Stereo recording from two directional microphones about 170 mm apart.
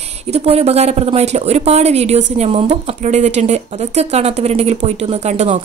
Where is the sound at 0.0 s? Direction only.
40° right (ahead or behind).